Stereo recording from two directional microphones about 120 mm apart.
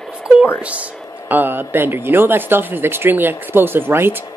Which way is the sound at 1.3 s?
15° right (ahead or behind).